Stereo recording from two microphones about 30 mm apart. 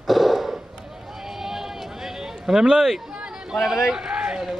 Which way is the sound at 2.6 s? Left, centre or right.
Right.